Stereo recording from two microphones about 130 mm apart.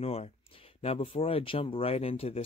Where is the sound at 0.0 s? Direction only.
50° left (ahead or behind).